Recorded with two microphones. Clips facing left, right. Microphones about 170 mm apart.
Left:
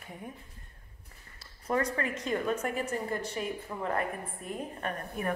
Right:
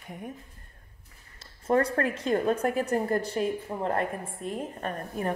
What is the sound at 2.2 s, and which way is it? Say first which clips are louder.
A woman's voice: right 6 dB; 35° right (ahead or behind).